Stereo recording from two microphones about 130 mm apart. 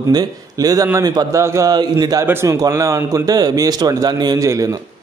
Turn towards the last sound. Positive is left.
turn(degrees=-25)  # may be behind; listen again after turning